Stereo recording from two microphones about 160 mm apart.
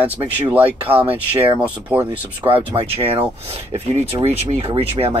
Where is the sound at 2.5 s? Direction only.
35° right (ahead or behind).